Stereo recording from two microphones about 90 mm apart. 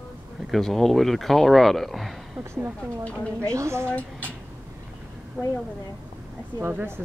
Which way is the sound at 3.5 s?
35° right (ahead or behind).